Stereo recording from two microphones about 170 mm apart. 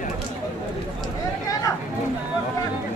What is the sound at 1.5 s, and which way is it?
Speech, 20° left (ahead or behind).